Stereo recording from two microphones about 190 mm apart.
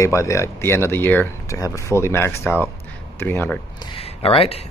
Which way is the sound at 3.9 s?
30° left (ahead or behind).